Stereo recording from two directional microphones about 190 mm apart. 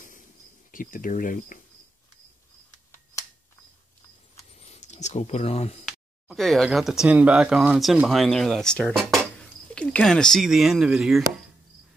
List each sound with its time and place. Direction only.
0.7 s speech: 45° left (ahead or behind)
4.5 s a sound: 35° left (ahead or behind)
5.9 s speech: centre (ahead or behind)